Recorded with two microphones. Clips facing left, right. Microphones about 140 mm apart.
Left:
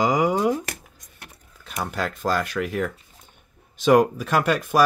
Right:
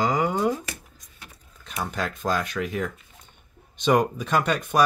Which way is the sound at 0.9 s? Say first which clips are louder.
Left 2 dB; 60° left (ahead or behind).